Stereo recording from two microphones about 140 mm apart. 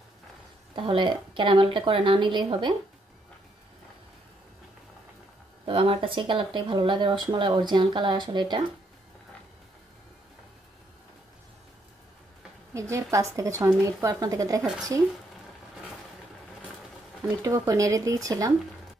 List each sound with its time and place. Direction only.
0.7 s speech: 35° right (ahead or behind)
5.7 s speech: 40° right (ahead or behind)
12.7 s speech: 20° right (ahead or behind)
17.2 s speech: 20° right (ahead or behind)